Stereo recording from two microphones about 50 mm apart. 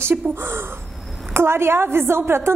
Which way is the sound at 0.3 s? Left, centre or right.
Right.